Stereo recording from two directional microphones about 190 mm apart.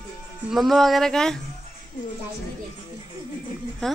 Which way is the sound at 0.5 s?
Centre (ahead or behind).